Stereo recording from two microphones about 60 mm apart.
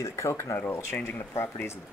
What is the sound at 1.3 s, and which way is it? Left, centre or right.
Speech, left.